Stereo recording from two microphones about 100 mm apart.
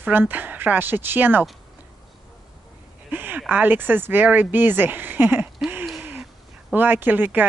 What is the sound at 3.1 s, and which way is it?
Speech, 20° right (ahead or behind).